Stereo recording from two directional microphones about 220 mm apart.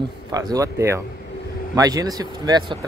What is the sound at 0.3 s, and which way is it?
Speech, 15° right (ahead or behind).